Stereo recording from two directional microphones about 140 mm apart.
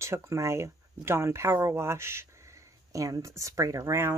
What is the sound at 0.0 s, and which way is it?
Speech, 20° right (ahead or behind).